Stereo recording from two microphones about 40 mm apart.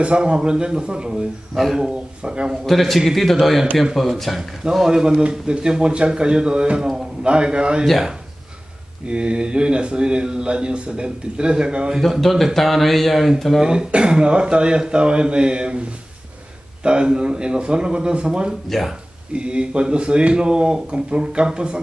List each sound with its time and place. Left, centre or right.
0.0 s a man's voice: right
2.6 s speech: centre
4.8 s a man's voice: centre
9.0 s a man's voice: right
12.0 s speech: centre
13.6 s a man's voice: right
16.8 s a man's voice: right
18.7 s speech: centre
19.3 s a man's voice: right